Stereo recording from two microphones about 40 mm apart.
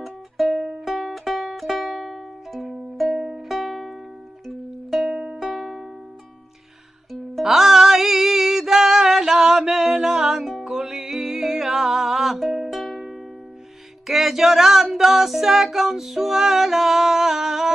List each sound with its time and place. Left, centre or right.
0.0 s music: centre
3.2 s music: centre
3.4 s music: centre
5.1 s music: right
5.4 s music: centre
7.1 s music: centre